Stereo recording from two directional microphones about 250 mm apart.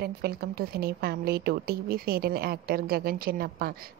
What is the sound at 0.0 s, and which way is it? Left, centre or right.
A woman's voice, right.